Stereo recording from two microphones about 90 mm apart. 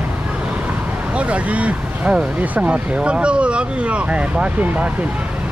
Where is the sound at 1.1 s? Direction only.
15° right (ahead or behind).